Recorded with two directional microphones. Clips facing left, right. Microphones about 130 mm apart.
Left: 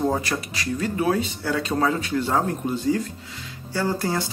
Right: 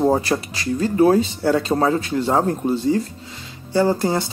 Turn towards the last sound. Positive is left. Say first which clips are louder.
# right 6 dB
turn(degrees=-25)  # may be behind; listen again after turning